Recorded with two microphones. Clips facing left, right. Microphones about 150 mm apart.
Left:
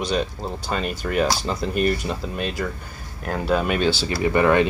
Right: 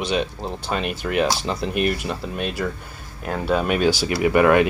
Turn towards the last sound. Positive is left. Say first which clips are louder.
# right 2 dB
turn(degrees=-10)  # may be behind; listen again after turning